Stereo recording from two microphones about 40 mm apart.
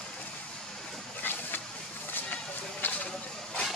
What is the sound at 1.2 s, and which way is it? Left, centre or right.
Vehicle, left.